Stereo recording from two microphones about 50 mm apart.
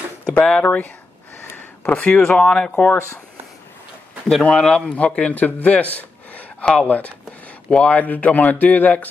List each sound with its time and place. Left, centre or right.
0.5 s speech: left
1.4 s a sound: left
2.3 s speech: centre
2.9 s speech: left
4.4 s a man's voice: centre
7.7 s speech: left